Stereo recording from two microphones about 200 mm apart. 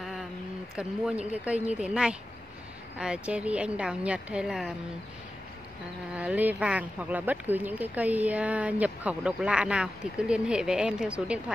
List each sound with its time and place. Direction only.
0.7 s a woman's voice: 5° right (ahead or behind)
6.1 s speech: 5° right (ahead or behind)